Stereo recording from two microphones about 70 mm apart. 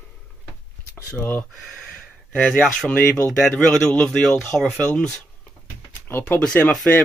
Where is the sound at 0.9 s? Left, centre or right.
Left.